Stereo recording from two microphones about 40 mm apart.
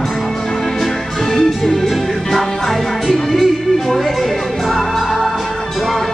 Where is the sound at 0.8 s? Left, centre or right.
Centre.